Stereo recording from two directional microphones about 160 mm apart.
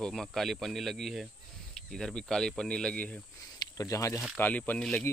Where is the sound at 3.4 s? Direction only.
20° left (ahead or behind).